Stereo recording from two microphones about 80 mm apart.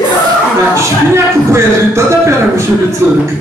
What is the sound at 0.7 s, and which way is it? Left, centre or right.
A man's voice, right.